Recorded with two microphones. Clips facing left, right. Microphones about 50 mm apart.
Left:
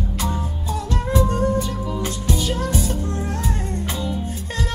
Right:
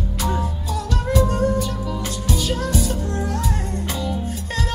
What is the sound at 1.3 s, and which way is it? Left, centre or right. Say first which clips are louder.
Music: even; left.